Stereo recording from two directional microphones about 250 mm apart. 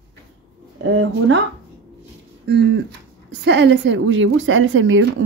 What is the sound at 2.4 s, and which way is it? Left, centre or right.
A woman's voice, right.